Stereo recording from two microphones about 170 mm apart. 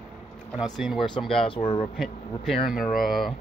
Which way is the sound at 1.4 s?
30° left (ahead or behind).